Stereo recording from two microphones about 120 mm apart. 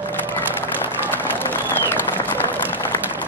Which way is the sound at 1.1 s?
15° left (ahead or behind).